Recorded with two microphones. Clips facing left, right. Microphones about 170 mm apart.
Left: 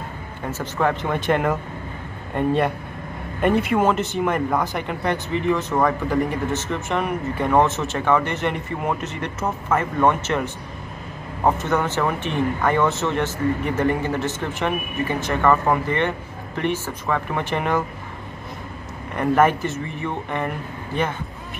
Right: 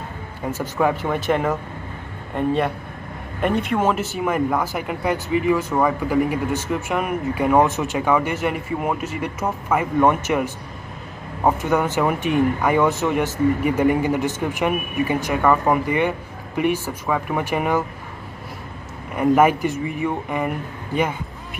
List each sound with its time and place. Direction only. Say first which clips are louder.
0.5 s speech: right 2 dB; 10° right (ahead or behind)
19.1 s speech: right 2 dB; 10° right (ahead or behind)